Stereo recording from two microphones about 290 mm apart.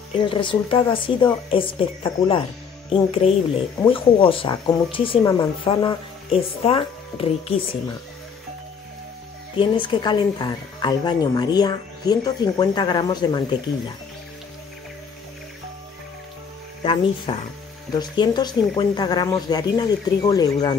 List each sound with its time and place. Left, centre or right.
0.2 s speech: centre
9.6 s speech: centre
16.8 s speech: centre